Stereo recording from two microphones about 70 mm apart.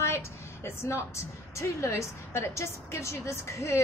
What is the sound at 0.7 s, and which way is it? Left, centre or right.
A woman's voice, left.